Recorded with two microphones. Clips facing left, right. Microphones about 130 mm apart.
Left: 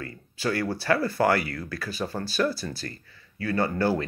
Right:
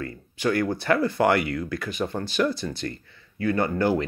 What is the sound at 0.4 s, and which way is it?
Speech, 20° right (ahead or behind).